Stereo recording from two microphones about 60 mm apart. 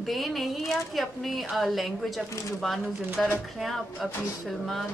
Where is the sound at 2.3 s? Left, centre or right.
Left.